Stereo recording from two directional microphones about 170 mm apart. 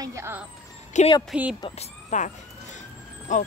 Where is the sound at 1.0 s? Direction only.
45° left (ahead or behind).